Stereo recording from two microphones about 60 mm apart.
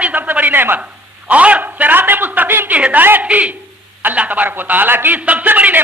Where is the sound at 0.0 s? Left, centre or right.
Right.